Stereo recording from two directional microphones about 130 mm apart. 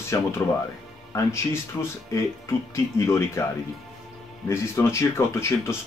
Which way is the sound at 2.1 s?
20° left (ahead or behind).